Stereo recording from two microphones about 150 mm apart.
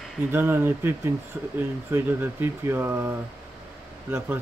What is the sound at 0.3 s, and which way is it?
Speech, 15° right (ahead or behind).